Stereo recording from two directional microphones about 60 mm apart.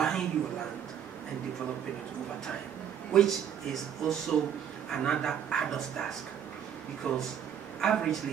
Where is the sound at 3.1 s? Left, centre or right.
Centre.